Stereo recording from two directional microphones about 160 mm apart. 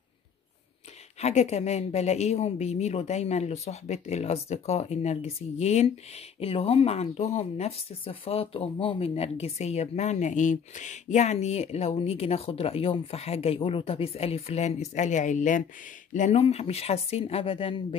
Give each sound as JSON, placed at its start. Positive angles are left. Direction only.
{"t": 1.2, "sound": "speech", "side_deg": 45}